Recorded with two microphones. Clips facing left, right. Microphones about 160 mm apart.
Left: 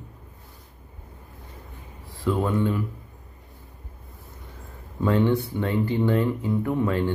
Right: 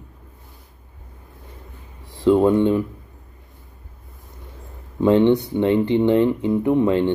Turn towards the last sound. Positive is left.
turn(degrees=-25)  # may be behind; listen again after turning